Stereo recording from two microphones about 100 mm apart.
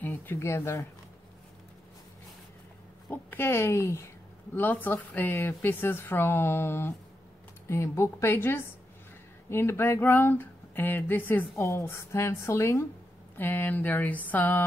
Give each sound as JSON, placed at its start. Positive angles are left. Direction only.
{"t": 0.0, "sound": "speech", "side_deg": 20}
{"t": 3.1, "sound": "speech", "side_deg": 20}
{"t": 13.4, "sound": "a sound", "side_deg": 20}